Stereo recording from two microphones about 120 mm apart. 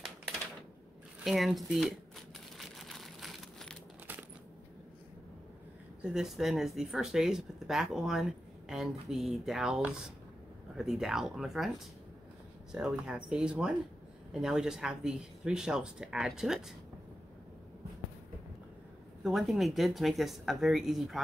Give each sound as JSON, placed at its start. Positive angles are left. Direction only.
{"t": 1.2, "sound": "a sound", "side_deg": 0}
{"t": 6.0, "sound": "speech", "side_deg": -5}
{"t": 12.7, "sound": "speech", "side_deg": -5}
{"t": 19.2, "sound": "speech", "side_deg": 0}